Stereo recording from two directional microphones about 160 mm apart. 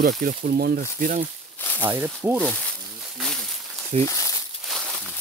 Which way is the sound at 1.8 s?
15° right (ahead or behind).